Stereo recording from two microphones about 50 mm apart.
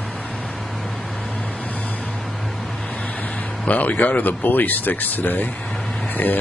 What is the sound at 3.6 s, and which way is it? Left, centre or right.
Speech, left.